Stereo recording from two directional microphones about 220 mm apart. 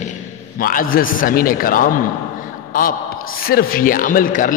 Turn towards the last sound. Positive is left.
turn(degrees=40)  # may be behind; listen again after turning